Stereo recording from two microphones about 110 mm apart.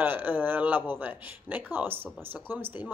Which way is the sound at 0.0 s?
20° right (ahead or behind).